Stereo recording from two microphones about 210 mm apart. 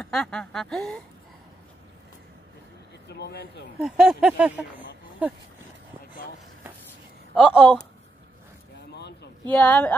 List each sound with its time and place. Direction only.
0.0 s speech: 5° left (ahead or behind)
3.1 s speech: 50° left (ahead or behind)
3.8 s speech: 5° right (ahead or behind)
7.3 s speech: 5° right (ahead or behind)
8.9 s a sound: 55° left (ahead or behind)
9.5 s a woman's voice: 5° left (ahead or behind)